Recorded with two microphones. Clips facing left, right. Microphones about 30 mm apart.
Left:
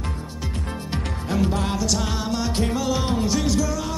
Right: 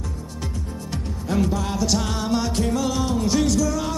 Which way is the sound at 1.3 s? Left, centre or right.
Centre.